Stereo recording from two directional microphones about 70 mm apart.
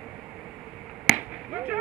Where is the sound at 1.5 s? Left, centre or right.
Right.